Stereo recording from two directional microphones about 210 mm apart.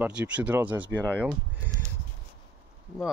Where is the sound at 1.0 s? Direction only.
10° left (ahead or behind).